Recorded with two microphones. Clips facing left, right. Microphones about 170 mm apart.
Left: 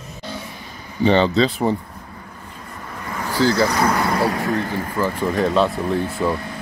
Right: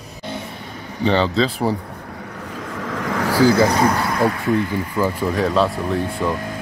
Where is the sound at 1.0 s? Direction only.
Centre (ahead or behind).